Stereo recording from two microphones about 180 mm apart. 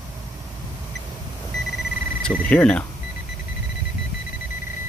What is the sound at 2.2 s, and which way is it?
Speech, 5° left (ahead or behind).